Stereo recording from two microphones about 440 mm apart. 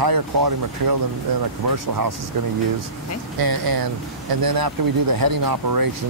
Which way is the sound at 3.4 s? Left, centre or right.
Right.